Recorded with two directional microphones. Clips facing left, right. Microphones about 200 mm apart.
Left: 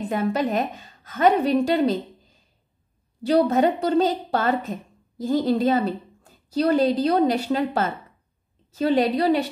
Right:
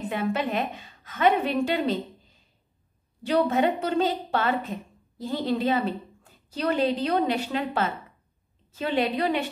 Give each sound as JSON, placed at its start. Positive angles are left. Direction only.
{"t": 0.1, "sound": "a woman's voice", "side_deg": 40}